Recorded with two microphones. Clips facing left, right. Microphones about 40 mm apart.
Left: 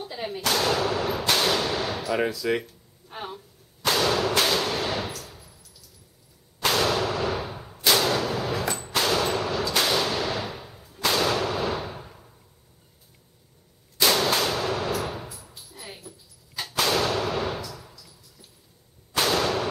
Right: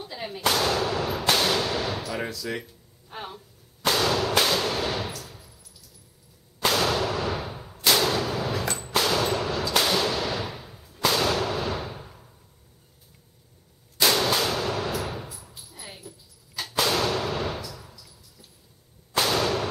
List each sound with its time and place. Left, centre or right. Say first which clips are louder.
0.0 s gunshot: left 3 dB; centre
0.5 s speech: even; centre
1.3 s whip: even; centre
2.0 s speech: left 6 dB; centre
2.6 s a sound: left 2 dB; centre
6.7 s artillery fire: left 1 dB; centre
13.9 s gunshot: even; centre
15.2 s a sound: left 1 dB; centre
16.8 s gunshot: left 1 dB; centre
19.1 s a sound: even; centre